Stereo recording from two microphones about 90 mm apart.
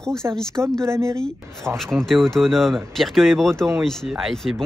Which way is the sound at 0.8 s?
30° right (ahead or behind).